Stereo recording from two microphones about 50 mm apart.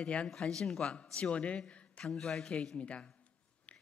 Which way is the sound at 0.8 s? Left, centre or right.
Left.